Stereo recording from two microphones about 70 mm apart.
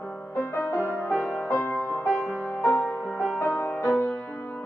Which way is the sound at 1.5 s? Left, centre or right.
Left.